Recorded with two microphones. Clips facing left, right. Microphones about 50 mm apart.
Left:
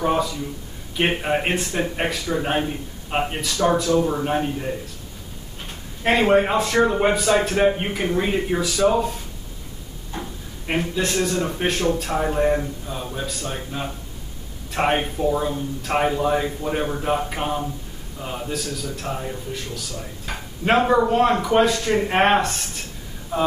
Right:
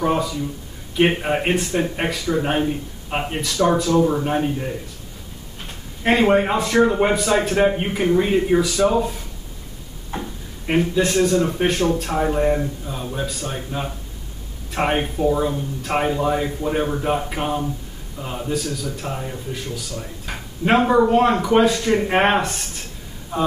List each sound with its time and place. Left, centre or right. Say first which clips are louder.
0.0 s a man's voice: right 1 dB; centre
6.0 s a man's voice: right 1 dB; centre
10.7 s a man's voice: right 4 dB; centre
15.0 s speech: right 2 dB; centre
15.9 s a man's voice: even; centre